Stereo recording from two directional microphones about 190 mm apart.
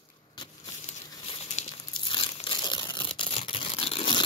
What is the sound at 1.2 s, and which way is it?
Crumpling, 30° left (ahead or behind).